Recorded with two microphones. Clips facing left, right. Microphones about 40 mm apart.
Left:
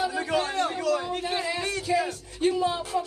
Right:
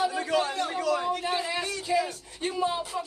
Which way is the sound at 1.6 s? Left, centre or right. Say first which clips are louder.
Left 1 dB; left.